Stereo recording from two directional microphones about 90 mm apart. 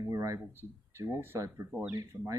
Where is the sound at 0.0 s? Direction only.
35° right (ahead or behind).